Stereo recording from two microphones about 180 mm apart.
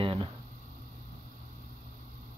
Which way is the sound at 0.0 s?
30° right (ahead or behind).